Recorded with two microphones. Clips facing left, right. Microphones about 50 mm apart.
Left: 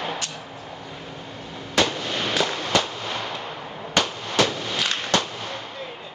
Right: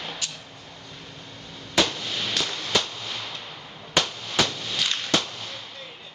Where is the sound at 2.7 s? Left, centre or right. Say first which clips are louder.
Left 3 dB; centre.